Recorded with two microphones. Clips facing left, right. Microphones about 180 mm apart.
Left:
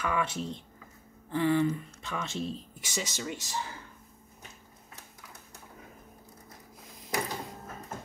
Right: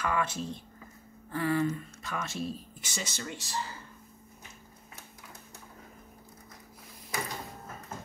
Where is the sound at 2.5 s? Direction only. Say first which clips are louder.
Left 3 dB; 15° left (ahead or behind).